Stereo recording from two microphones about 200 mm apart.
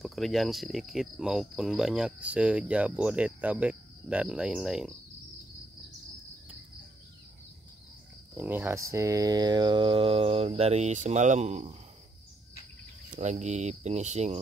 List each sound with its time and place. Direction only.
0.0 s cricket: centre (ahead or behind)
8.4 s speech: 10° right (ahead or behind); by 11.7 s 35° right (ahead or behind)
13.1 s speech: 35° right (ahead or behind)